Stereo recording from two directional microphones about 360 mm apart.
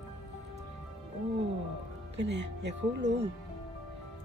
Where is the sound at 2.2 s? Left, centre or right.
Right.